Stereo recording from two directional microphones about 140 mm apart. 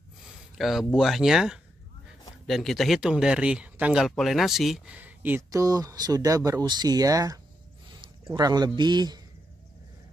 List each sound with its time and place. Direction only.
0.2 s a sound: centre (ahead or behind)
0.9 s speech: centre (ahead or behind)
4.9 s speech: 15° right (ahead or behind)
5.6 s speech: 25° right (ahead or behind)